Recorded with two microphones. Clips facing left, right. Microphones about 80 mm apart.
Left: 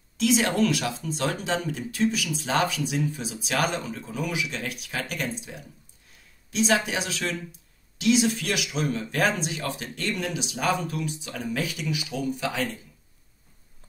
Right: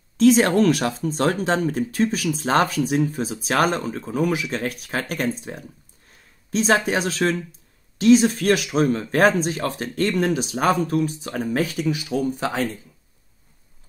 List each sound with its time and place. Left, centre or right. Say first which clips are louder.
0.2 s speech: right 7 dB; right